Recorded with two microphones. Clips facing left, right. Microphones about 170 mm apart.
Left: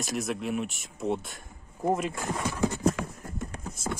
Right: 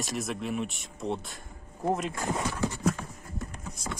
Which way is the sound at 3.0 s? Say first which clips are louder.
Left 6 dB; 90° left.